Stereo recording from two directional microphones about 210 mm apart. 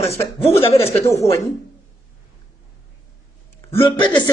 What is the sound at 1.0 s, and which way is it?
Speech, 15° left (ahead or behind).